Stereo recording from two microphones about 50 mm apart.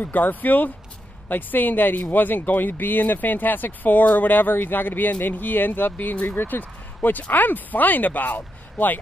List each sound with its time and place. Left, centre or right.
0.0 s speech: left